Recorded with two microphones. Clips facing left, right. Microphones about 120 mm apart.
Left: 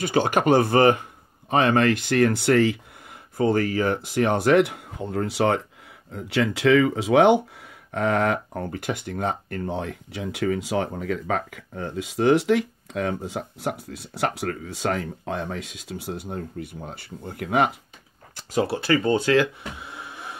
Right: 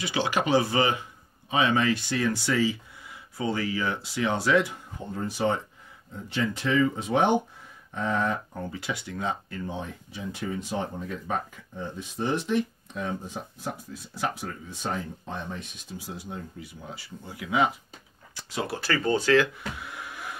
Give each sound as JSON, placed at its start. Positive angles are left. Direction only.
{"t": 0.0, "sound": "speech", "side_deg": 50}
{"t": 7.9, "sound": "a sound", "side_deg": 90}
{"t": 8.7, "sound": "speech", "side_deg": 50}
{"t": 18.3, "sound": "speech", "side_deg": 45}
{"t": 18.7, "sound": "speech", "side_deg": 25}